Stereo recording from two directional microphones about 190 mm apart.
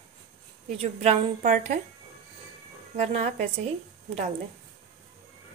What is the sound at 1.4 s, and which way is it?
Speech, 45° right (ahead or behind).